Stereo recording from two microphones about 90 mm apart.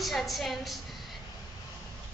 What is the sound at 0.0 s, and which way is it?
Speech, centre (ahead or behind).